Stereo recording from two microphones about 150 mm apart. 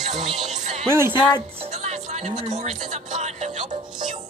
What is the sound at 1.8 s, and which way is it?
Music, 50° right (ahead or behind).